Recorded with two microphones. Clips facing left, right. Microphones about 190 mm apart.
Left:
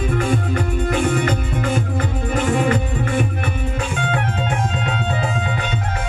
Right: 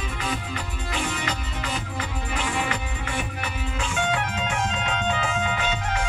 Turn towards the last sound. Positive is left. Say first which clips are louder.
# left 3 dB
turn(degrees=35)  # may be behind; listen again after turning